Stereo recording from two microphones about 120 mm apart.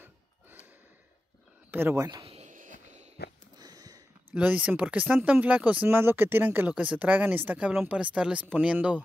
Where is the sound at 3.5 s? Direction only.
30° right (ahead or behind).